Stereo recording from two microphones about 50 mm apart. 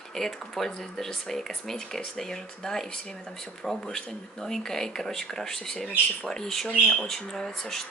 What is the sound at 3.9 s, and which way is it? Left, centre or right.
Speech, centre.